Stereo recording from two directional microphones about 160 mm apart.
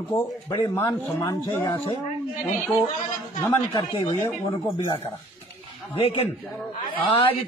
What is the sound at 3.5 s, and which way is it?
Speech, 25° left (ahead or behind).